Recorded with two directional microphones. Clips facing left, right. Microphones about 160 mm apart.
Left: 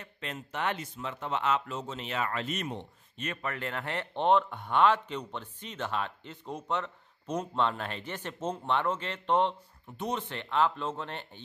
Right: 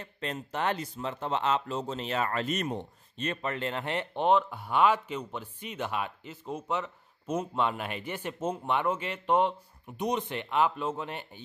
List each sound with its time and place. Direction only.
0.0 s speech: 35° right (ahead or behind)
3.3 s speech: 25° right (ahead or behind)
4.1 s speech: 5° right (ahead or behind)